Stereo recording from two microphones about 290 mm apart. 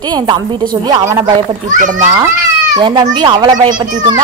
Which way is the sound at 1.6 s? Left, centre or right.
Right.